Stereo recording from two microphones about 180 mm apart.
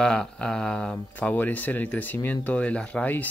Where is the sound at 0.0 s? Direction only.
5° left (ahead or behind).